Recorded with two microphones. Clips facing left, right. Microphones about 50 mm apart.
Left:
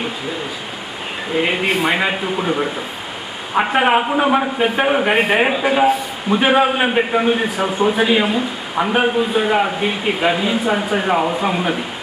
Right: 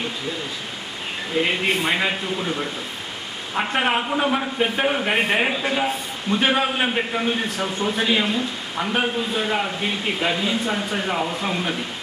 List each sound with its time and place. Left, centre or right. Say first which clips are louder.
1.3 s a man's voice: left 4 dB; centre